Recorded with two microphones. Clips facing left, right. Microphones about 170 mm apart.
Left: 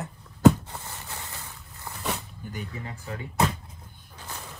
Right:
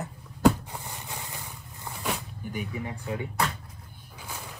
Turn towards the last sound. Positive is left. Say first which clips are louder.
# even
turn(degrees=-10)  # may be behind; listen again after turning